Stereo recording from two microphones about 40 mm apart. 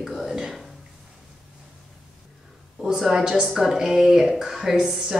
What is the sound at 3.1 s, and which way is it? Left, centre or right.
A woman's voice, centre.